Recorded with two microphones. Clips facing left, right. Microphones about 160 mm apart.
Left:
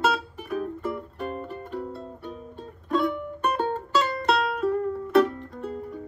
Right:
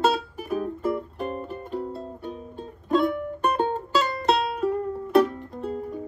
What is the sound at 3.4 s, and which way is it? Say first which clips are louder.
Music: right 2 dB; 25° right (ahead or behind).